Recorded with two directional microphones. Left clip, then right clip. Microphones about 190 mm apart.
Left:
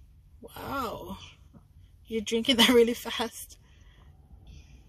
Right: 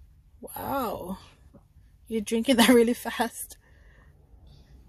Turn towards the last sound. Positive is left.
turn(degrees=-45)  # may be behind; listen again after turning